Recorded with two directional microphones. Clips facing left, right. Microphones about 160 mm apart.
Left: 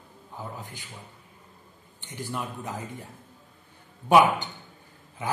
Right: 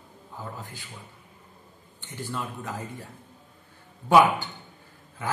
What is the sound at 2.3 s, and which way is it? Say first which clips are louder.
Speech: even; 15° left (ahead or behind).